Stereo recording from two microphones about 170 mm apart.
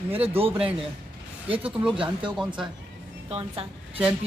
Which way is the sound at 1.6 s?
5° right (ahead or behind).